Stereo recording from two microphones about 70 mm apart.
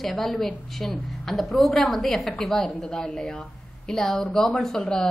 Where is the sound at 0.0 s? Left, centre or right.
Centre.